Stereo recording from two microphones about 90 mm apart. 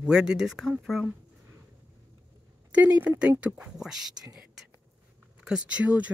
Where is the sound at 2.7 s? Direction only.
15° right (ahead or behind).